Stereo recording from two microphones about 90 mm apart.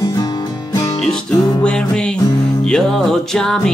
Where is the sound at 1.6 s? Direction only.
10° left (ahead or behind).